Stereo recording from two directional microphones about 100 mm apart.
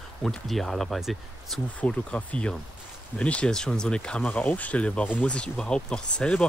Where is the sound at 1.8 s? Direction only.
10° left (ahead or behind).